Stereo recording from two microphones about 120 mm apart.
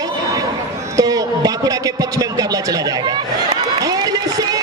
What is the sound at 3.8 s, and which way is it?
Run, 30° right (ahead or behind).